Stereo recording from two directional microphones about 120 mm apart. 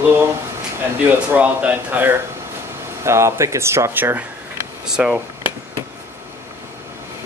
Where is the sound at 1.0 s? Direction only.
15° right (ahead or behind).